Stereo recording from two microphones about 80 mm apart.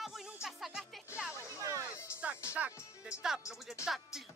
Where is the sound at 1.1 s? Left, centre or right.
Centre.